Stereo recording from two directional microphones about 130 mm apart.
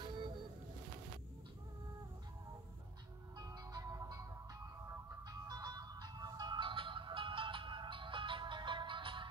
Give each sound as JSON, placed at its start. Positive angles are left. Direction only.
{"t": 3.3, "sound": "music", "side_deg": -30}
{"t": 5.5, "sound": "music", "side_deg": -30}